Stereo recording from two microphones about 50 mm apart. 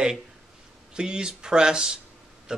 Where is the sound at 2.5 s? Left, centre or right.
Centre.